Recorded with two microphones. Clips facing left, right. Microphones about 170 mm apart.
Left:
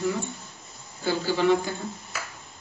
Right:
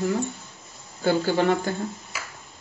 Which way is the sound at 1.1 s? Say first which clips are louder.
Right 2 dB; 50° right (ahead or behind).